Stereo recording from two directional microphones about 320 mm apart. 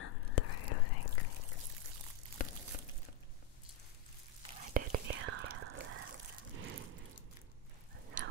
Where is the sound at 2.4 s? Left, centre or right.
Left.